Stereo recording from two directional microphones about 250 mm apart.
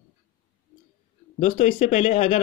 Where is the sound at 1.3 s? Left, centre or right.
Left.